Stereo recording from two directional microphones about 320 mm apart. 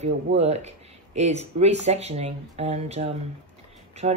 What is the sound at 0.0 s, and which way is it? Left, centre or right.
Speech, centre.